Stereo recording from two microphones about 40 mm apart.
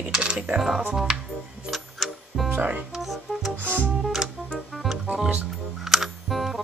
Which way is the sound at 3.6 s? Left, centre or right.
Right.